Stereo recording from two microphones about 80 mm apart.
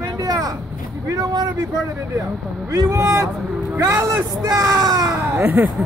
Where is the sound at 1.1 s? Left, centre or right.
Right.